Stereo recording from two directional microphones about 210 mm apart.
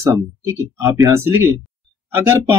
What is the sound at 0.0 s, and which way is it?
Speech, 15° right (ahead or behind).